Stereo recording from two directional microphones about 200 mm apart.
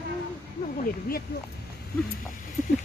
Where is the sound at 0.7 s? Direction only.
45° left (ahead or behind).